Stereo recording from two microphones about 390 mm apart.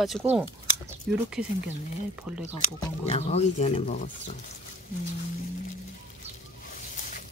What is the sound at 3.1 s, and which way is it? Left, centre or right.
Speech, centre.